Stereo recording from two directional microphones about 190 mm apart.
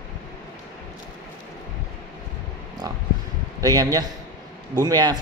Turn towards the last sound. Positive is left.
turn(degrees=-20)  # may be behind; listen again after turning